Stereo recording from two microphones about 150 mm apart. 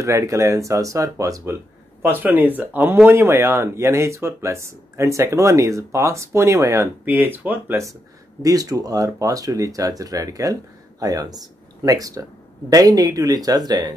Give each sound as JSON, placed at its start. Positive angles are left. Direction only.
{"t": 0.0, "sound": "speech", "side_deg": -20}